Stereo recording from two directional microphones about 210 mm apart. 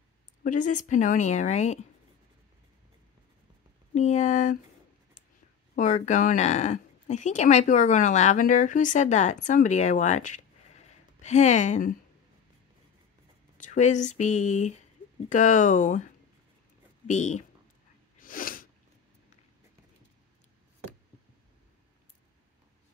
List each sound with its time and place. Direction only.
0.4 s speech: 40° left (ahead or behind)
3.9 s speech: 35° left (ahead or behind)
5.8 s speech: 35° left (ahead or behind)
13.6 s speech: 35° left (ahead or behind)
17.1 s speech: 35° left (ahead or behind)
18.2 s sneeze: 40° left (ahead or behind)